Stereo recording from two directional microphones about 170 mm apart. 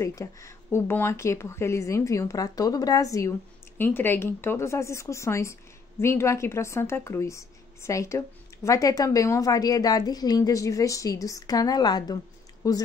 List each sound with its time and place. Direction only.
0.0 s a woman's voice: 20° left (ahead or behind)